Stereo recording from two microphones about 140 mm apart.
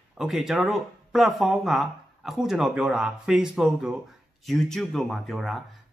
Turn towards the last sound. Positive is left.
turn(degrees=0)  # may be behind; listen again after turning